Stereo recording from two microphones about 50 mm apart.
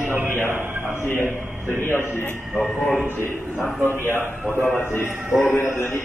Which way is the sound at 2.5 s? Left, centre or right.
Centre.